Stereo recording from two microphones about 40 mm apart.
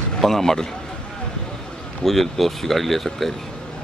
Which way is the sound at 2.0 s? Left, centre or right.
Centre.